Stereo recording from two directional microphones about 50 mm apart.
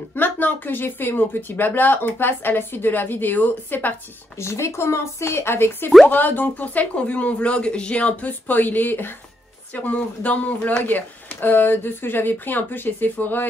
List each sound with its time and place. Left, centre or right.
0.1 s speech: left
4.4 s speech: left
6.0 s speech: left
9.8 s speech: left